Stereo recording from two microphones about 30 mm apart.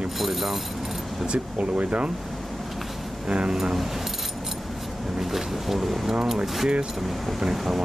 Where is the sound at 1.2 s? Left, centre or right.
Right.